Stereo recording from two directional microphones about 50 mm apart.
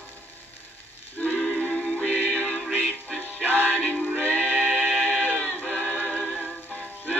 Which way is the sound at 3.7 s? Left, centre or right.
Left.